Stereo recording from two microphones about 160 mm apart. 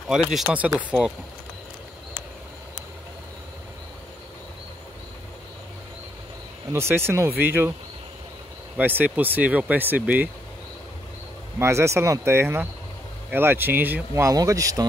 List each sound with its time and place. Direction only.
0.5 s speech: 10° right (ahead or behind)
6.7 s speech: 15° right (ahead or behind)
8.7 s speech: 10° right (ahead or behind)
11.6 s speech: 15° right (ahead or behind)